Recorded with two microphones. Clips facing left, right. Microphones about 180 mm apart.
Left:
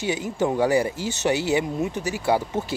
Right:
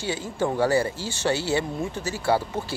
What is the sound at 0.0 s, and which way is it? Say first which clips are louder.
Speech: left 3 dB; 20° left (ahead or behind).